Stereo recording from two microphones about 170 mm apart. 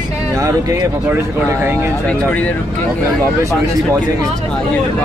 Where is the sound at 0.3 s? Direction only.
20° right (ahead or behind).